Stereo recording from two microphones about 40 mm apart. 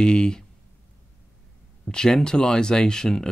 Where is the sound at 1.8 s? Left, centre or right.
Centre.